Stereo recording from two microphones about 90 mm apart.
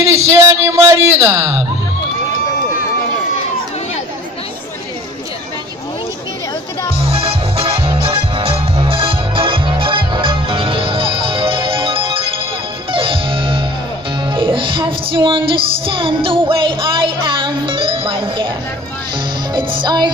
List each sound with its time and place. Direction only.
0.0 s a sound: 35° right (ahead or behind)
7.0 s music: 90° right; by 18.5 s 70° right (ahead or behind)
19.5 s music: 55° right (ahead or behind)